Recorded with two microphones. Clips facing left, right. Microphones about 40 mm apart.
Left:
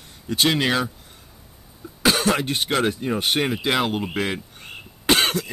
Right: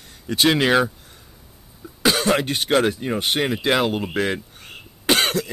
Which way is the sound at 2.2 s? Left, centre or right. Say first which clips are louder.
Right 2 dB; centre.